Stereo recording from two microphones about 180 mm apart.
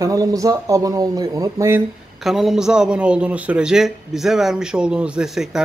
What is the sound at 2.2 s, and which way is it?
Speech, centre (ahead or behind).